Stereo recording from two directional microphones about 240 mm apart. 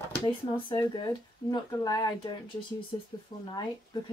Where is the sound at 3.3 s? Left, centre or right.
Centre.